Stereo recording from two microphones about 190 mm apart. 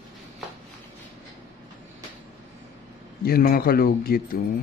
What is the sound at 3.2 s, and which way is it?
A man's voice, 50° left (ahead or behind).